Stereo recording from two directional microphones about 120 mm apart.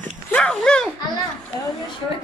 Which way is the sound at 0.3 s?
5° left (ahead or behind).